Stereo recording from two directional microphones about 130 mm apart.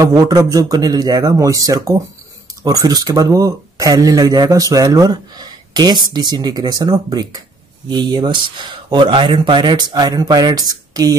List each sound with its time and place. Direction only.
0.0 s speech: 30° right (ahead or behind)